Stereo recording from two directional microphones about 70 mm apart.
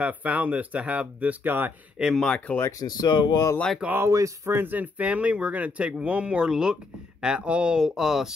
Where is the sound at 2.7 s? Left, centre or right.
Left.